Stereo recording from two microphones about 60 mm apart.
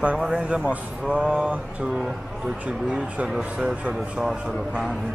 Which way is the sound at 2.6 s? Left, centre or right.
Centre.